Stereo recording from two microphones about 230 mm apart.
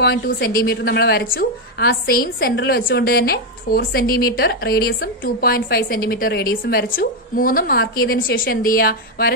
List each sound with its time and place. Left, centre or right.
0.0 s a woman's voice: left